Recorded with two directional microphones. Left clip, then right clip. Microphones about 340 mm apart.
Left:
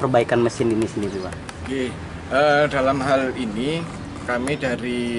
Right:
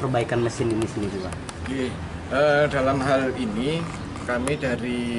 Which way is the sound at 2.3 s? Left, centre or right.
Centre.